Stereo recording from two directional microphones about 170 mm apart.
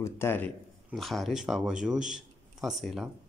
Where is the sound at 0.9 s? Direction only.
Centre (ahead or behind).